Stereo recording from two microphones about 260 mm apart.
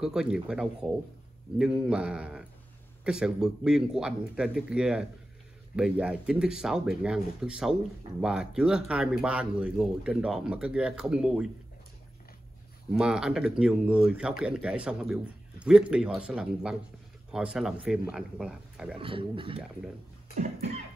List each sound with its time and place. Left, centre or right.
0.0 s speech: centre
12.9 s speech: centre
18.9 s speech: centre